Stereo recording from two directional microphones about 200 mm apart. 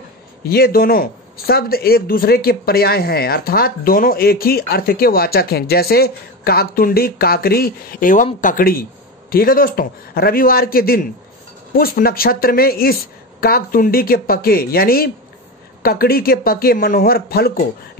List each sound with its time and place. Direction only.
0.4 s speech: 50° left (ahead or behind)